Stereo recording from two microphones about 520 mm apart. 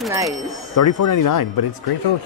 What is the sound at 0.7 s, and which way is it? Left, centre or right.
Speech, left.